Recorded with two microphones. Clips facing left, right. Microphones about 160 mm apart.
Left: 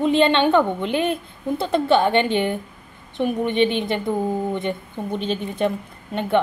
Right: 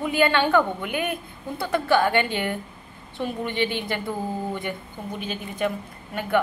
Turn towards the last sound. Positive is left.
turn(degrees=25)  # may be behind; listen again after turning